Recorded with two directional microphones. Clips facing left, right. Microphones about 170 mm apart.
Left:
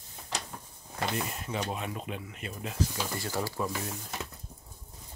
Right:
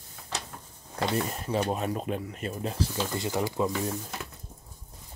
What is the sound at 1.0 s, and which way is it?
Speech, 35° right (ahead or behind).